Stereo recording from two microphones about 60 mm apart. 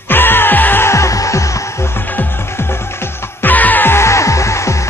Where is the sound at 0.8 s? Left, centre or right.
Left.